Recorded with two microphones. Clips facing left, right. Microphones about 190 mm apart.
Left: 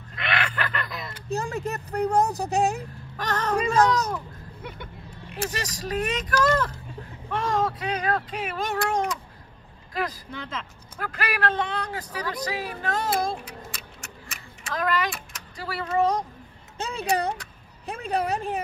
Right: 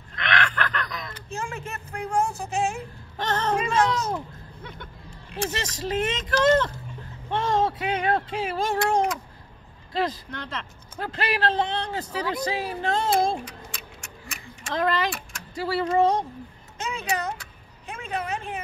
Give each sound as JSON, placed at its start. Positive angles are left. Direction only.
{"t": 0.1, "sound": "a sound", "side_deg": 5}
{"t": 1.3, "sound": "speech", "side_deg": 35}
{"t": 3.2, "sound": "speech", "side_deg": -25}
{"t": 3.5, "sound": "speech", "side_deg": 35}
{"t": 5.8, "sound": "speech", "side_deg": -25}
{"t": 10.3, "sound": "speech", "side_deg": 5}
{"t": 11.0, "sound": "speech", "side_deg": -25}
{"t": 13.3, "sound": "a sound", "side_deg": 5}
{"t": 14.7, "sound": "speech", "side_deg": -25}
{"t": 16.7, "sound": "a sound", "side_deg": 35}
{"t": 17.8, "sound": "a woman's voice", "side_deg": 35}